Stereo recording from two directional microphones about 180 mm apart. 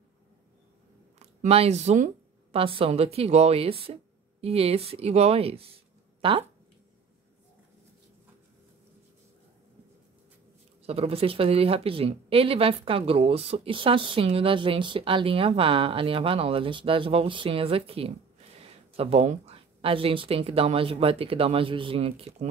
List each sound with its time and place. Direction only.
1.2 s speech: 35° right (ahead or behind)
10.8 s speech: 35° right (ahead or behind)